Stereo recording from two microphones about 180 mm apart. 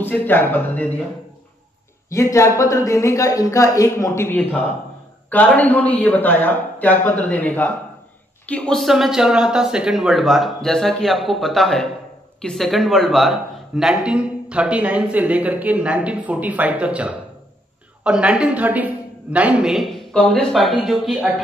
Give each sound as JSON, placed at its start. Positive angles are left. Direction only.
{"t": 0.0, "sound": "speech", "side_deg": 10}
{"t": 2.0, "sound": "speech", "side_deg": 15}